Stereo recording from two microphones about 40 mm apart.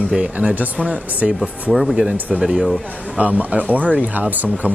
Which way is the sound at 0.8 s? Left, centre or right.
Right.